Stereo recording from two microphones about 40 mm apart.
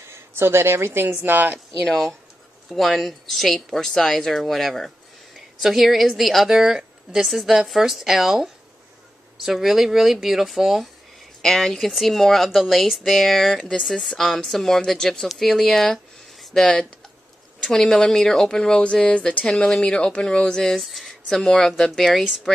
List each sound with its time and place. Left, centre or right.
0.1 s speech: right
2.7 s a woman's voice: centre
6.5 s speech: centre
7.2 s a woman's voice: centre
11.4 s a woman's voice: centre; by 19.5 s left
19.5 s a woman's voice: centre
20.8 s a woman's voice: centre